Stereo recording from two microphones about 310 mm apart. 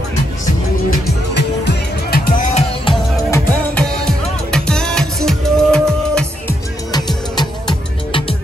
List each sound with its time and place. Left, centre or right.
0.8 s music: left
2.9 s music: centre
6.9 s music: centre